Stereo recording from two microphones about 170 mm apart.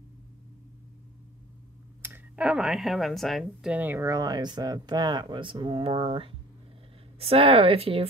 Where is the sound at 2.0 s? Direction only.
10° right (ahead or behind); by 8.1 s 35° right (ahead or behind).